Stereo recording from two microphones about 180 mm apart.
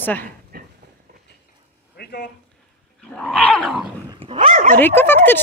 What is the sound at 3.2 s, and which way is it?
Dog, 5° left (ahead or behind).